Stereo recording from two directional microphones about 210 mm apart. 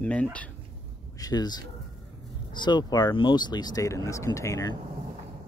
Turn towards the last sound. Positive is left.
turn(degrees=15)  # may be behind; listen again after turning